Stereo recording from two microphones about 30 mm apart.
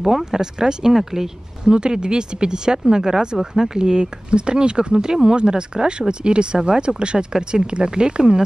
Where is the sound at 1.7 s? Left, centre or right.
Right.